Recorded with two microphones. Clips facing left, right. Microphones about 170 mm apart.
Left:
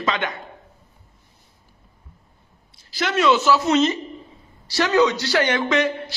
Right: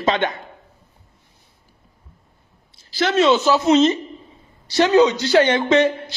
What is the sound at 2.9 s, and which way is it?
A man's voice, 30° right (ahead or behind).